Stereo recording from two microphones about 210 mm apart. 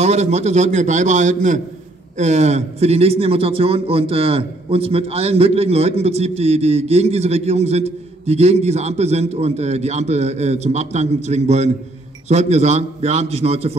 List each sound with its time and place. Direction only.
0.0 s a man's voice: 30° right (ahead or behind)